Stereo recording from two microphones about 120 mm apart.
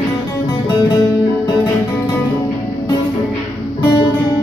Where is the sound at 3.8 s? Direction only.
35° left (ahead or behind).